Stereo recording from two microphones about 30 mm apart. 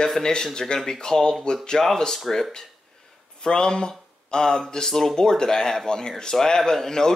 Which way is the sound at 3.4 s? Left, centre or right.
Left.